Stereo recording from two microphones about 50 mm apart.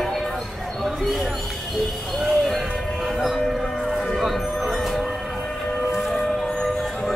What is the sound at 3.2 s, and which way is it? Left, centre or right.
Music, centre.